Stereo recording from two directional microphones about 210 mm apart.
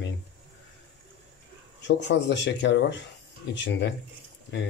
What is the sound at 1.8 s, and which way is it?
Speech, 55° left (ahead or behind).